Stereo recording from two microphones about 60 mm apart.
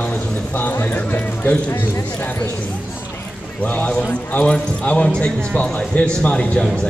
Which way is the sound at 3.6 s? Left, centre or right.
Left.